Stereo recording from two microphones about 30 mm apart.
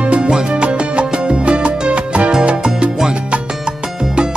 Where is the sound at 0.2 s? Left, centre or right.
Right.